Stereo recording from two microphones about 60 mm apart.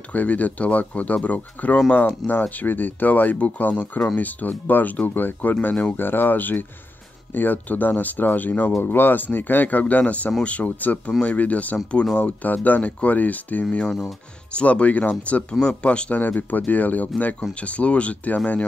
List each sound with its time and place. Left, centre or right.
0.1 s speech: left
12.4 s speech: left
16.2 s speech: left